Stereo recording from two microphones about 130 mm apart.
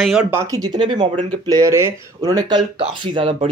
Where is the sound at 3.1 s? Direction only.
50° right (ahead or behind).